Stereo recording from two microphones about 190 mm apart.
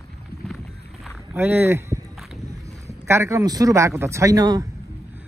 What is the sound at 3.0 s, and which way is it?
A man's voice, 15° right (ahead or behind).